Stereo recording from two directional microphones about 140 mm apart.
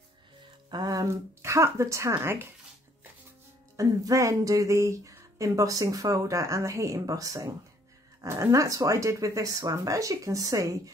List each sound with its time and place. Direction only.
0.7 s speech: 30° right (ahead or behind)
3.7 s speech: 25° right (ahead or behind)